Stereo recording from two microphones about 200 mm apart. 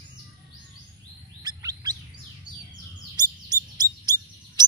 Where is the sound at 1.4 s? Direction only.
20° right (ahead or behind).